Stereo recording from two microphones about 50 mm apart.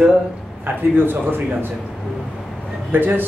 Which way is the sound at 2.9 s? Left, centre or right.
Right.